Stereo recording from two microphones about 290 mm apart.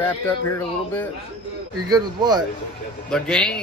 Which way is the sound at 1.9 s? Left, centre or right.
Centre.